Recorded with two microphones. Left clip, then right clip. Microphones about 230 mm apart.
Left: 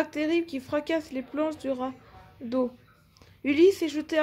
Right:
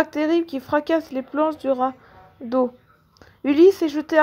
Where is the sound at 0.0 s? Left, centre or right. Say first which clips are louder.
Right 6 dB; centre.